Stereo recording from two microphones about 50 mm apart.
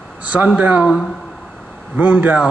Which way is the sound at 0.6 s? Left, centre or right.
Right.